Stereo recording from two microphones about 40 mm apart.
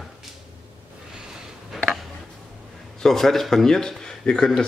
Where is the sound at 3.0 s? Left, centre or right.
Centre.